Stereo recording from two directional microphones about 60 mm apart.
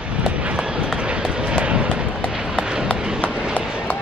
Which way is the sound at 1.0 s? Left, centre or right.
Centre.